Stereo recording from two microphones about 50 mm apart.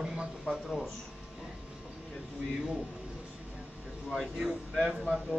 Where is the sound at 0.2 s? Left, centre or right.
Centre.